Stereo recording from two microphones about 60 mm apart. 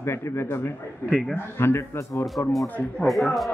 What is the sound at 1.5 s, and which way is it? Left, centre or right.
Speech, left.